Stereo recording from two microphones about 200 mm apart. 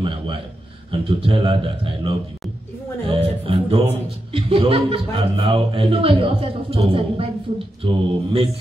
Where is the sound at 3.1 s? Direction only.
30° right (ahead or behind).